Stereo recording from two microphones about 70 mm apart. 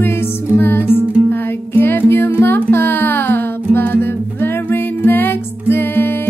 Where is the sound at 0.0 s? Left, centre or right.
Left.